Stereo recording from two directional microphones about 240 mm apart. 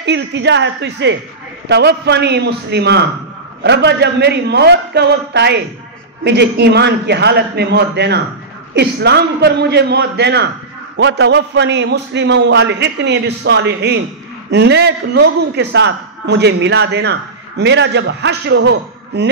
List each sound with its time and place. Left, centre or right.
0.0 s a man's voice: right